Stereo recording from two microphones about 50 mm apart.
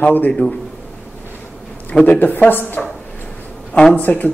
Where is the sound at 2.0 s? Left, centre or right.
Left.